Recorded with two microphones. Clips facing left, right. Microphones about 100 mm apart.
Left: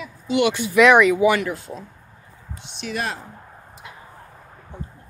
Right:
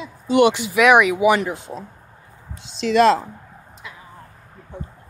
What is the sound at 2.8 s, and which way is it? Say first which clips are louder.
Speech: right 13 dB; 90° right.